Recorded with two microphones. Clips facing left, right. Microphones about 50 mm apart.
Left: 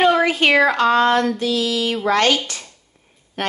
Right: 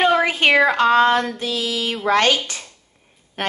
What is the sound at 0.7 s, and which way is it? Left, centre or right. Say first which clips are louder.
Speech: right 1 dB; right.